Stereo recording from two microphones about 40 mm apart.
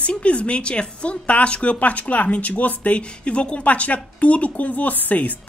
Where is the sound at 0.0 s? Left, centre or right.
Left.